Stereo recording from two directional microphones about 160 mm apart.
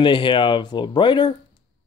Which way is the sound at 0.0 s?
30° left (ahead or behind).